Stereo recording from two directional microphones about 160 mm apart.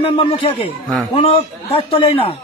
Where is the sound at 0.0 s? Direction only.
35° left (ahead or behind).